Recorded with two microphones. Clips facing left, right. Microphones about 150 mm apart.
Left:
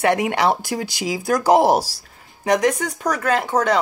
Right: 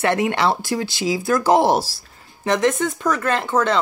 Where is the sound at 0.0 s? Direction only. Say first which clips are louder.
Left 1 dB; 15° left (ahead or behind).